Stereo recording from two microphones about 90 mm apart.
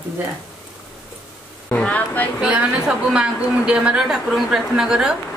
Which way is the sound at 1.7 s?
15° left (ahead or behind).